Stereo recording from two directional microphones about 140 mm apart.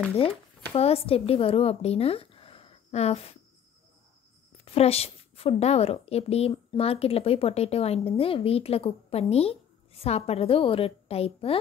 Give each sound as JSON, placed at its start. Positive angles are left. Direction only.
{"t": 0.7, "sound": "speech", "side_deg": 45}
{"t": 4.6, "sound": "a woman's voice", "side_deg": 45}